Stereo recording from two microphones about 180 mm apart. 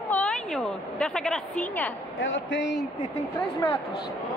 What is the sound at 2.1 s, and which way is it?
Speech, 90° left.